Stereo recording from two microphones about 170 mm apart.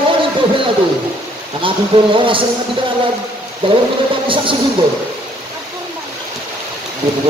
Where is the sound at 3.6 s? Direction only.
30° right (ahead or behind).